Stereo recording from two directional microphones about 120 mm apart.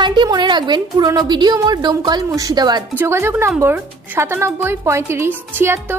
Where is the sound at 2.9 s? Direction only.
20° right (ahead or behind).